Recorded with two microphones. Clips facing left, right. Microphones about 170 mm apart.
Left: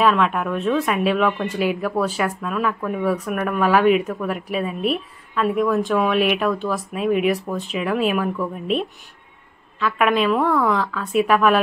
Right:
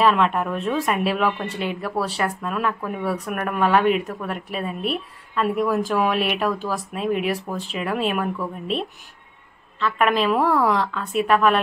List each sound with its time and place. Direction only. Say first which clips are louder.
0.0 s speech: even; centre (ahead or behind)
2.5 s speech: left 2 dB; 5° right (ahead or behind)
9.8 s a woman's voice: left 1 dB; 5° left (ahead or behind)